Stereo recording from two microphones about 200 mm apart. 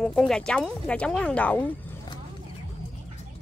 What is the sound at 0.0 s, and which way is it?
Speech, 5° left (ahead or behind).